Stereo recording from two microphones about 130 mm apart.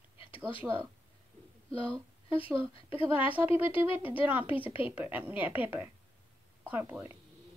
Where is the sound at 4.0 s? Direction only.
15° right (ahead or behind).